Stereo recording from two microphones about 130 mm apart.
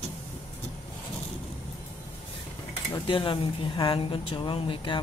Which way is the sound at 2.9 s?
40° left (ahead or behind).